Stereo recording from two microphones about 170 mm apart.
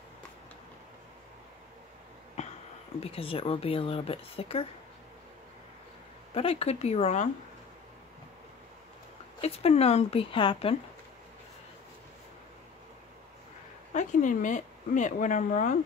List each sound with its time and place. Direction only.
2.4 s a sound: 40° left (ahead or behind)
3.0 s speech: 35° left (ahead or behind)
6.3 s speech: 35° left (ahead or behind)
9.4 s speech: 35° left (ahead or behind)
13.9 s speech: 50° left (ahead or behind)